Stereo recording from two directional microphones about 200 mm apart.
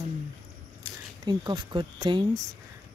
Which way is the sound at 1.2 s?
20° right (ahead or behind).